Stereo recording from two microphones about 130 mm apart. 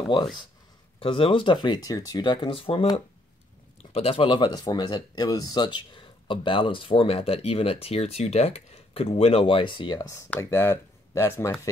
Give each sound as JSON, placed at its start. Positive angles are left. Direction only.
{"t": 0.1, "sound": "speech", "side_deg": 35}
{"t": 3.9, "sound": "speech", "side_deg": 45}